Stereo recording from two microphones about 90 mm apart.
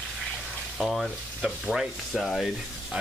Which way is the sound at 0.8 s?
Centre (ahead or behind).